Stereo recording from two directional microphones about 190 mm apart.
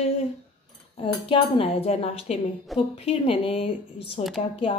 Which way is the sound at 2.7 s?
Centre (ahead or behind).